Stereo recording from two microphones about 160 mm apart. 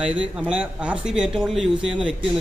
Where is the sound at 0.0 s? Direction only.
5° right (ahead or behind).